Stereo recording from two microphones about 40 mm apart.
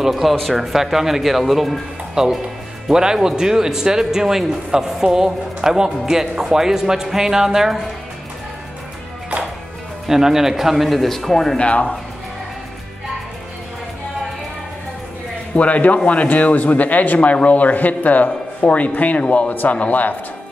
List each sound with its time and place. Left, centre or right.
0.0 s speech: centre
2.2 s speech: centre
10.0 s speech: centre
11.5 s speech: left
15.5 s speech: left